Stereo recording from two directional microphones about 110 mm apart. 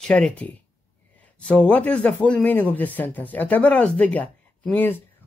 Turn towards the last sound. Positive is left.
turn(degrees=15)  # may be behind; listen again after turning